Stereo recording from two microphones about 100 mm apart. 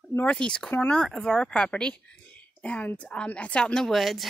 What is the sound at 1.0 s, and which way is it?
Speech, 5° left (ahead or behind).